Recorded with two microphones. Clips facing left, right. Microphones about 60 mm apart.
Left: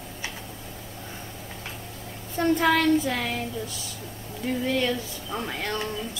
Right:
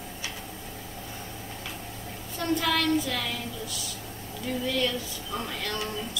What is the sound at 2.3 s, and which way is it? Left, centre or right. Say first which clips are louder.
Speech: left 5 dB; left.